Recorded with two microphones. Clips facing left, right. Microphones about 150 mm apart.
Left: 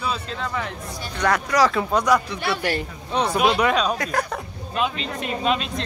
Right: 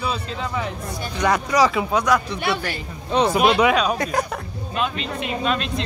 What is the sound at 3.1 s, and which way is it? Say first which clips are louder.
Speech: right 4 dB; 90° right.